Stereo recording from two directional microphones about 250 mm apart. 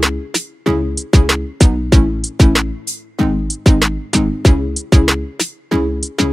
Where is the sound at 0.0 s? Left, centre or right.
Centre.